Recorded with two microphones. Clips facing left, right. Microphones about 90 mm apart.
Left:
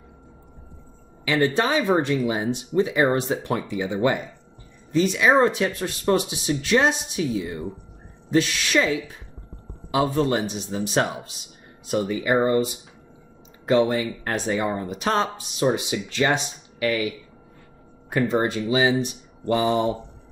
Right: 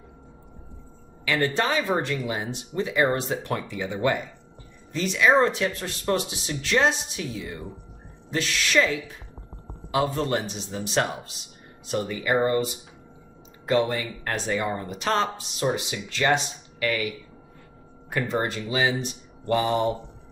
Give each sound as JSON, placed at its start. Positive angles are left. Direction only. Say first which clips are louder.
{"t": 1.2, "sound": "a woman's voice", "louder": "left 3 dB", "side_deg": 20}
{"t": 9.9, "sound": "speech", "louder": "left 3 dB", "side_deg": 15}
{"t": 13.7, "sound": "speech", "louder": "left 4 dB", "side_deg": 20}
{"t": 18.1, "sound": "speech", "louder": "left 5 dB", "side_deg": 15}